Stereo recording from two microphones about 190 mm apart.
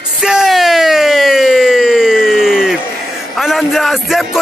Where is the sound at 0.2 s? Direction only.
Centre (ahead or behind).